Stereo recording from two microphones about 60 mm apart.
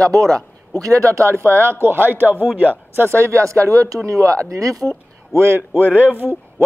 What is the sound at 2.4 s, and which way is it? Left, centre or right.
Speech, right.